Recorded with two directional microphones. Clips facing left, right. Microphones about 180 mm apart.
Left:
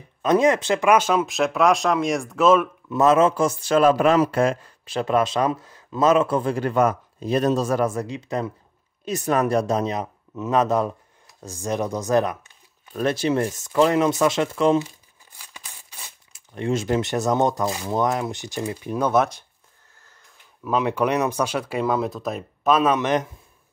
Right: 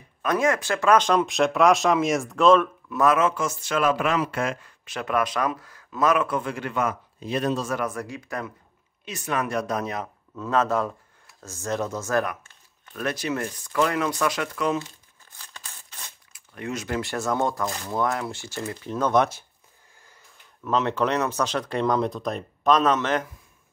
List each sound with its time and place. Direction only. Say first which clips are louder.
0.2 s speech: left 5 dB; 20° left (ahead or behind)
2.9 s a man's voice: left 5 dB; 25° left (ahead or behind)
9.0 s speech: left 7 dB; 40° left (ahead or behind)
15.3 s scissors: even; 10° left (ahead or behind)
16.3 s speech: left 7 dB; 25° left (ahead or behind); by 19.2 s 10° left (ahead or behind)
20.6 s speech: left 2 dB; 10° left (ahead or behind)